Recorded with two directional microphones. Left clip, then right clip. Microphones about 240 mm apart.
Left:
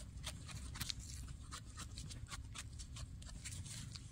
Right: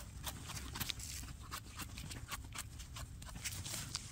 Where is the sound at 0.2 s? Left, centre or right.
Centre.